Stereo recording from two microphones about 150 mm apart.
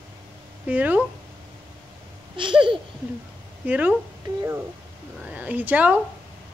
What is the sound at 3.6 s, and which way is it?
Speech, 10° right (ahead or behind).